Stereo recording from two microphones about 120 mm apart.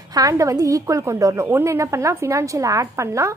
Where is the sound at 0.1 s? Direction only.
30° right (ahead or behind).